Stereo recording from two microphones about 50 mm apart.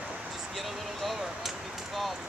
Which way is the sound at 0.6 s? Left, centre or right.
Centre.